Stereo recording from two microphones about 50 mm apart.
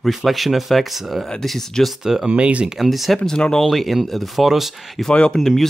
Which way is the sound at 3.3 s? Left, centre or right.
Centre.